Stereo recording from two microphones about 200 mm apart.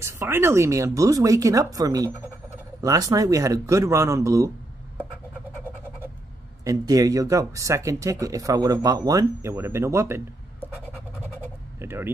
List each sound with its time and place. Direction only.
0.0 s speech: 15° right (ahead or behind)
6.6 s speech: 15° right (ahead or behind)
11.8 s speech: 10° right (ahead or behind)